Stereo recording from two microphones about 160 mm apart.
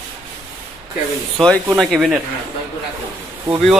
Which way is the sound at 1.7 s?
Centre (ahead or behind).